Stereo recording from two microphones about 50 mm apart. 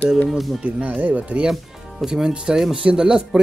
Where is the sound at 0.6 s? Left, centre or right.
Right.